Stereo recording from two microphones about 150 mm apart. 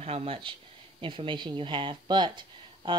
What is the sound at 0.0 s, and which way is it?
Speech, 40° right (ahead or behind).